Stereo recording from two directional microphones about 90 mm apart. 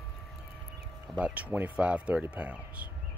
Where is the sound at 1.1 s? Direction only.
15° right (ahead or behind).